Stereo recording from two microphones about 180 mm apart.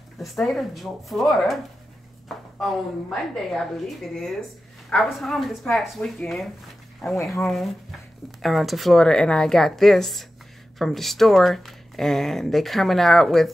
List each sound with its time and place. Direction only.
0.2 s speech: centre (ahead or behind)